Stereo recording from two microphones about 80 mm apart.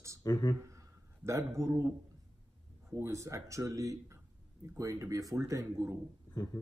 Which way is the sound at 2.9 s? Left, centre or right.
Right.